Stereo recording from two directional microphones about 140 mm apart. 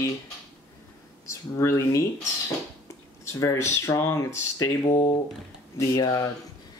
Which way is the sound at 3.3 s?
20° left (ahead or behind).